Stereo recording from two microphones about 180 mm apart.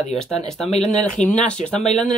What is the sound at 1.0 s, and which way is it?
Speech, 40° left (ahead or behind).